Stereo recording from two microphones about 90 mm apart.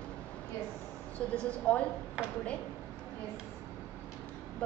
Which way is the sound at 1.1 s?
15° left (ahead or behind).